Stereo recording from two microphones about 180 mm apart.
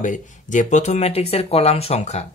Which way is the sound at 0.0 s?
45° left (ahead or behind).